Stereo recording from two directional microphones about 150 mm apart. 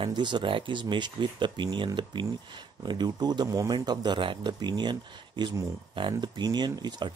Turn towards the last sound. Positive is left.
turn(degrees=-30)  # may be behind; listen again after turning